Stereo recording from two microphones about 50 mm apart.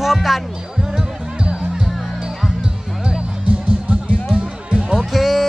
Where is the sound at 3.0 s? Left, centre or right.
Centre.